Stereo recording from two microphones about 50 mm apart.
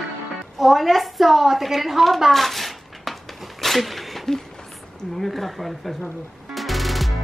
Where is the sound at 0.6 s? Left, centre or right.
Centre.